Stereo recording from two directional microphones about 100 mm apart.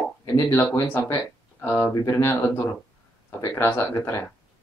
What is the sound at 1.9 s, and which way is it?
Speech, 30° left (ahead or behind).